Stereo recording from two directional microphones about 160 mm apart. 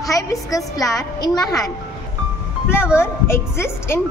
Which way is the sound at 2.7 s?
15° left (ahead or behind).